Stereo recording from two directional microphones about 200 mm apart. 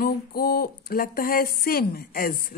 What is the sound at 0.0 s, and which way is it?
Speech, 50° left (ahead or behind).